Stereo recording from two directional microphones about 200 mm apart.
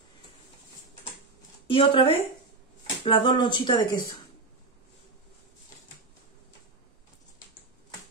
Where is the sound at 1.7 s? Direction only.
25° left (ahead or behind).